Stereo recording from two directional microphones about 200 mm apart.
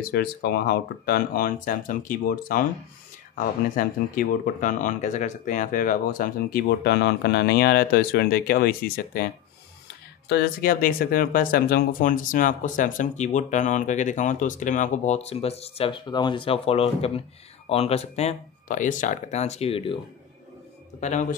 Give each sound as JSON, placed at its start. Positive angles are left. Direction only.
{"t": 0.0, "sound": "speech", "side_deg": 55}
{"t": 21.0, "sound": "speech", "side_deg": 40}